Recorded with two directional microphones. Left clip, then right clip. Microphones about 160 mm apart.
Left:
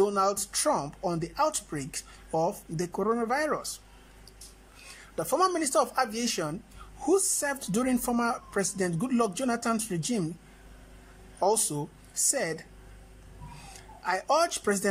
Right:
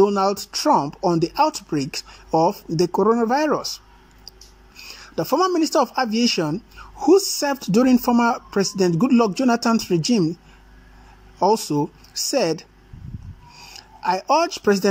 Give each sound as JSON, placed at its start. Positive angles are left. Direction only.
{"t": 0.0, "sound": "speech", "side_deg": -10}
{"t": 4.7, "sound": "speech", "side_deg": -10}
{"t": 11.3, "sound": "speech", "side_deg": -10}
{"t": 13.6, "sound": "speech", "side_deg": -10}